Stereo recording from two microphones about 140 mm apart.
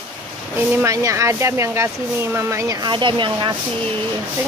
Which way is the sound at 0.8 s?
20° right (ahead or behind).